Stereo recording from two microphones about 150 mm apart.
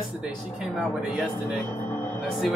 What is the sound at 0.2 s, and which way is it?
Speech, 5° right (ahead or behind).